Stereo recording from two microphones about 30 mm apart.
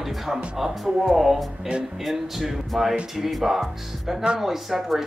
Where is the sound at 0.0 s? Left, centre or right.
Centre.